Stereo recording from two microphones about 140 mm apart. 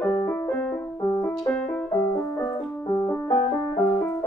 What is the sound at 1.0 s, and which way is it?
Music, 25° left (ahead or behind).